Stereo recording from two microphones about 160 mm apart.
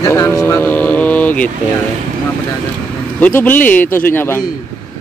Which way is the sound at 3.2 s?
10° left (ahead or behind).